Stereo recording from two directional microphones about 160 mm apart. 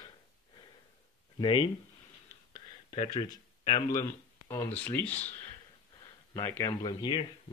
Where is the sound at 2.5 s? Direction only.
35° left (ahead or behind).